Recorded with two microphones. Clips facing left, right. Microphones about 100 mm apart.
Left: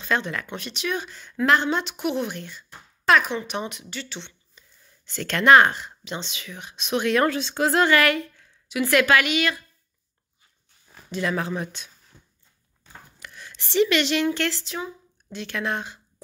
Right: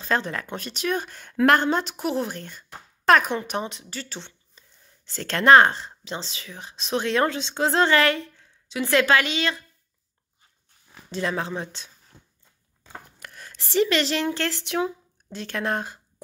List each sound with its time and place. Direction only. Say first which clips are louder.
0.0 s speech: even; 35° right (ahead or behind)
3.6 s speech: even; 30° right (ahead or behind)
4.0 s speech: right 1 dB; 40° right (ahead or behind)
11.1 s speech: left 1 dB; 30° right (ahead or behind)
13.2 s speech: even; 45° right (ahead or behind)
14.5 s speech: right 6 dB; 65° right (ahead or behind)
15.3 s speech: right 1 dB; 40° right (ahead or behind)